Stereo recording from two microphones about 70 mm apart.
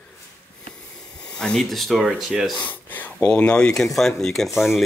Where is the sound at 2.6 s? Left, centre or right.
Left.